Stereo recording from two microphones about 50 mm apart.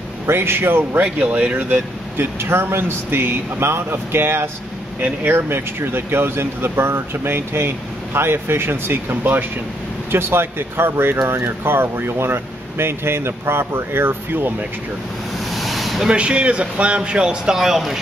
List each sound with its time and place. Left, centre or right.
0.3 s speech: right
1.1 s speech: right
2.1 s speech: right
15.5 s a sound: centre
16.1 s speech: right